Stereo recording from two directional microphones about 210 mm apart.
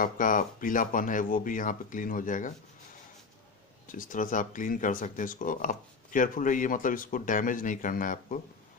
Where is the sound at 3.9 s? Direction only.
40° left (ahead or behind).